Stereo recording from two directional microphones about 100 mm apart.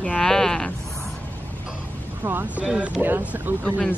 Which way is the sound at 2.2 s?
20° right (ahead or behind).